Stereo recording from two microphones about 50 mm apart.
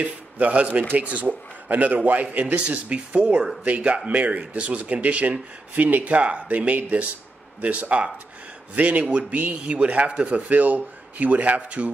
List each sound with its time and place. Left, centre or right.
0.0 s speech: right
10.5 s speech: right